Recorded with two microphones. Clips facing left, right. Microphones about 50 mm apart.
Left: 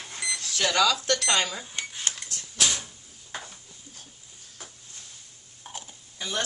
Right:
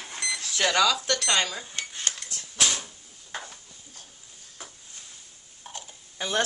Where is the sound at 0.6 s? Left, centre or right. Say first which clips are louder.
Even; centre.